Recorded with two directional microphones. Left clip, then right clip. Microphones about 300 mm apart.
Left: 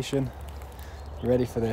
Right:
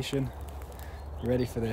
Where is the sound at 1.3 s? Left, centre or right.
Centre.